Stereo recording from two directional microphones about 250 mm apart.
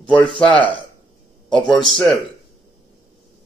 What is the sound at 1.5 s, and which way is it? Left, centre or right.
Speech, centre.